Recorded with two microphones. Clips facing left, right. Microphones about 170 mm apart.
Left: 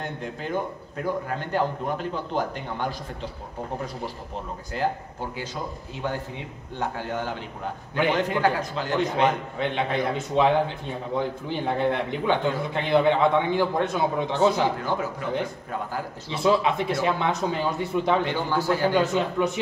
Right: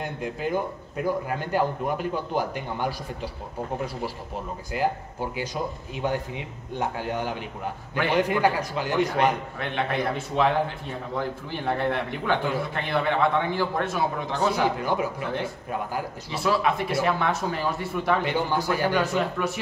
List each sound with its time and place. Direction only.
0.0 s speech: 10° right (ahead or behind)
4.7 s speech: 10° right (ahead or behind)
9.6 s a man's voice: 20° left (ahead or behind)
14.8 s speech: 15° right (ahead or behind)
16.3 s a man's voice: 20° left (ahead or behind)
18.2 s speech: 15° right (ahead or behind)
18.9 s a man's voice: 20° left (ahead or behind)